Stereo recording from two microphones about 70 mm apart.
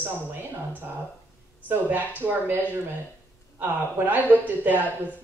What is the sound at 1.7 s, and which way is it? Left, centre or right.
Speech, right.